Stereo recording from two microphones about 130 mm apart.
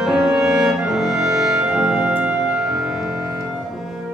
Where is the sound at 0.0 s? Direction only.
5° right (ahead or behind).